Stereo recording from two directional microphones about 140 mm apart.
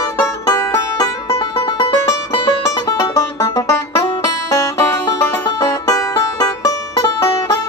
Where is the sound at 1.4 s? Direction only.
35° left (ahead or behind).